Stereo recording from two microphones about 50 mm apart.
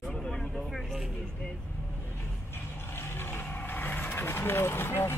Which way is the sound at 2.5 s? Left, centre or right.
Left.